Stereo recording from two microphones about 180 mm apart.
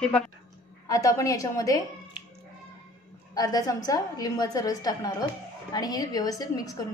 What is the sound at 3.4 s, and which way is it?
A woman's voice, 20° left (ahead or behind).